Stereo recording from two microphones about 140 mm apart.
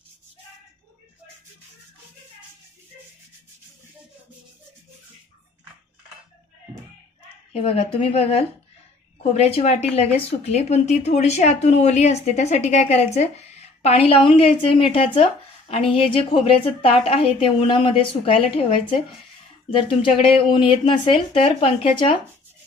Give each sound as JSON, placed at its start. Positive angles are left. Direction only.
{"t": 7.5, "sound": "speech", "side_deg": 45}